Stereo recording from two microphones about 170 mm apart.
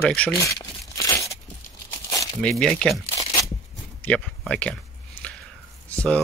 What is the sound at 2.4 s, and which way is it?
Speech, 5° left (ahead or behind).